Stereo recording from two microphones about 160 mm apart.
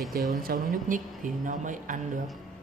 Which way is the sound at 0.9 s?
55° right (ahead or behind).